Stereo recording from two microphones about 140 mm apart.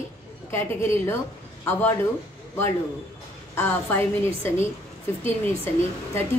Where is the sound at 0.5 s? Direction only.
20° left (ahead or behind).